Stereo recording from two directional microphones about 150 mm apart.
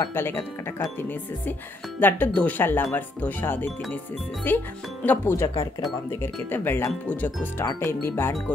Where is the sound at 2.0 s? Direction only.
10° left (ahead or behind).